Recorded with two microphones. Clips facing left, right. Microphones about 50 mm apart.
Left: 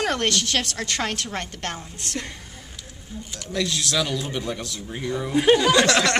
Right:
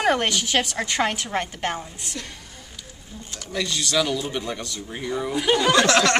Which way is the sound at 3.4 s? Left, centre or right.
Centre.